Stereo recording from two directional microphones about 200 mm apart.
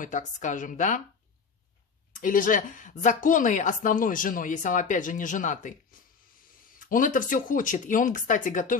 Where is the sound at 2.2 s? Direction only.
40° left (ahead or behind).